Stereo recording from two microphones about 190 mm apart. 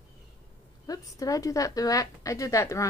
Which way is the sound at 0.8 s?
20° left (ahead or behind).